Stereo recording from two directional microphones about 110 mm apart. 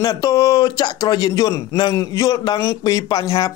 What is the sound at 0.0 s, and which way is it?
A man's voice, 30° left (ahead or behind).